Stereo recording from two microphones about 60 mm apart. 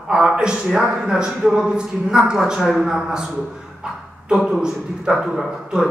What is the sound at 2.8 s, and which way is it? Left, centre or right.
A man's voice, centre.